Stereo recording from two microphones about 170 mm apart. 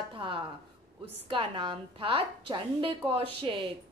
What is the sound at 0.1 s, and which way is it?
A woman's voice, 30° right (ahead or behind).